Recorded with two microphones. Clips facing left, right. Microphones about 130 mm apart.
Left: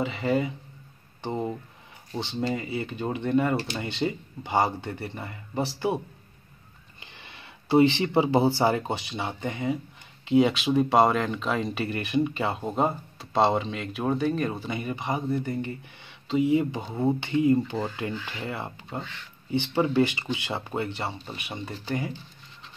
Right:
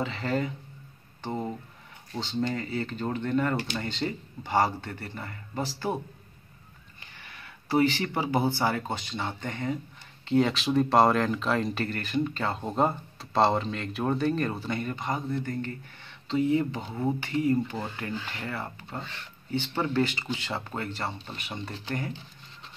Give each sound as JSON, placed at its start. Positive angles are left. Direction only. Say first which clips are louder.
{"t": 0.0, "sound": "speech", "louder": "left 3 dB", "side_deg": 10}
{"t": 2.4, "sound": "speech", "louder": "left 2 dB", "side_deg": 10}
{"t": 7.0, "sound": "speech", "louder": "left 1 dB", "side_deg": 20}
{"t": 11.9, "sound": "speech", "louder": "left 3 dB", "side_deg": 15}